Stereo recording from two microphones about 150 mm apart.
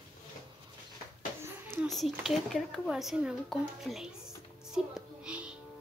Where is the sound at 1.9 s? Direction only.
Centre (ahead or behind).